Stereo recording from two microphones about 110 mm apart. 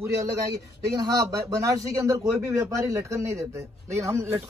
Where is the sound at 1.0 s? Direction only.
35° right (ahead or behind).